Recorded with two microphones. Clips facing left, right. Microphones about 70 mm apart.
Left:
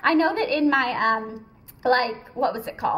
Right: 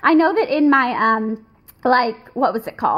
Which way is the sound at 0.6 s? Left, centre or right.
Right.